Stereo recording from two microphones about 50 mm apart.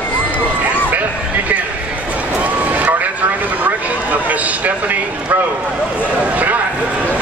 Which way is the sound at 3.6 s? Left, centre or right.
Right.